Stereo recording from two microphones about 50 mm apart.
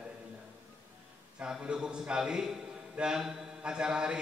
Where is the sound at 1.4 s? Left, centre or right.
Centre.